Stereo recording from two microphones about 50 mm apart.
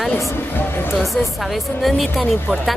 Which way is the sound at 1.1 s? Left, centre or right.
Centre.